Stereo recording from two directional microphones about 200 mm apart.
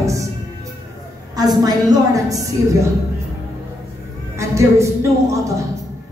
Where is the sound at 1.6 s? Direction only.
20° right (ahead or behind).